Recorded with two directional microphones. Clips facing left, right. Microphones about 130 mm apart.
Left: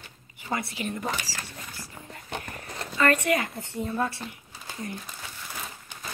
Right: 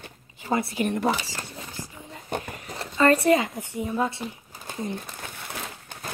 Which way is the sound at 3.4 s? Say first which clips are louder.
Right 3 dB; 10° right (ahead or behind).